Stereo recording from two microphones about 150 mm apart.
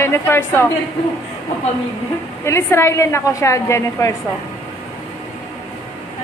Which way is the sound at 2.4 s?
20° left (ahead or behind).